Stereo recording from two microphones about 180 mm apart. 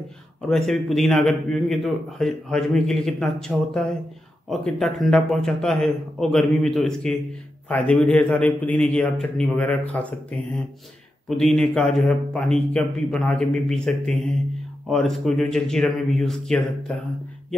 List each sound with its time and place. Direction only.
0.5 s a man's voice: centre (ahead or behind)